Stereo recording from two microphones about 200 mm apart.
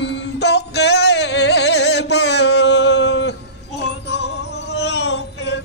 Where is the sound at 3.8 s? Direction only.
60° left (ahead or behind).